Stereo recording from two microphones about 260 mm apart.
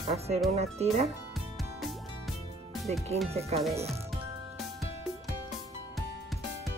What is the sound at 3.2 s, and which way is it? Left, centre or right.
Speech, right.